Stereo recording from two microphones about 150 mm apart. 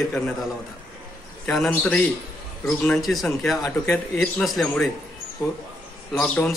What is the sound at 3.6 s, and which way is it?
Speech, 15° left (ahead or behind).